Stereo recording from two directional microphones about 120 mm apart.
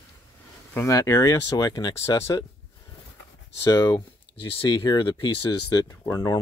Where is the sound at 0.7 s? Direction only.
25° left (ahead or behind).